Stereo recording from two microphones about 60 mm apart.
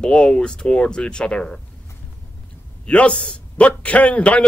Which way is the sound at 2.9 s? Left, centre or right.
Centre.